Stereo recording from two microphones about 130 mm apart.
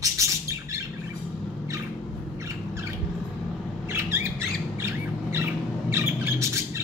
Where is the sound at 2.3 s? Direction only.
20° right (ahead or behind).